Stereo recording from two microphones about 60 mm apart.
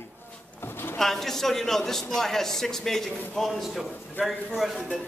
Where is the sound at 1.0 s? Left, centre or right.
Centre.